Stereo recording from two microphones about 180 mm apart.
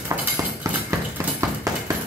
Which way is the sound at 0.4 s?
15° right (ahead or behind).